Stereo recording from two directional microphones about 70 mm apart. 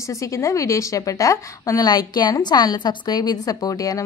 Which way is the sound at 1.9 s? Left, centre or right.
Left.